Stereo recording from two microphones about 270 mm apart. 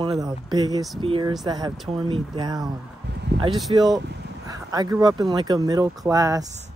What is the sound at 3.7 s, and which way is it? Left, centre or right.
Speech, centre.